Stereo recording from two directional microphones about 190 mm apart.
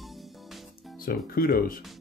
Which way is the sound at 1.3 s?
50° left (ahead or behind).